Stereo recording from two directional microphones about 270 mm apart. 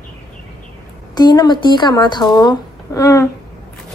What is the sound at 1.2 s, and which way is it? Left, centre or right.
Speech, centre.